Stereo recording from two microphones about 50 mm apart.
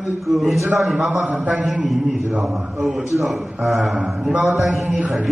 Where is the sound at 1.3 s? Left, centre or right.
Right.